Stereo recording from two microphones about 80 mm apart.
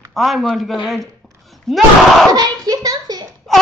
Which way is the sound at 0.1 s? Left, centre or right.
Centre.